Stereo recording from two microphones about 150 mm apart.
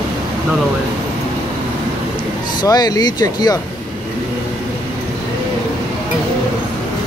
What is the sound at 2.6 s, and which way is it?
Speech, 25° left (ahead or behind).